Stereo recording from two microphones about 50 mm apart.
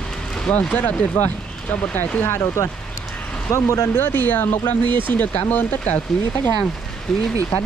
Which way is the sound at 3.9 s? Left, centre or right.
Left.